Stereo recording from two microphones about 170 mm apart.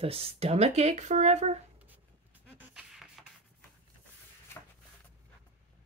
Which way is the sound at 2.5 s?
5° right (ahead or behind).